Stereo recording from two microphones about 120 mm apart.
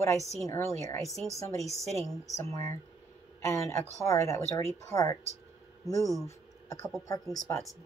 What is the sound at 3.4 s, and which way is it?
Speech, 25° left (ahead or behind).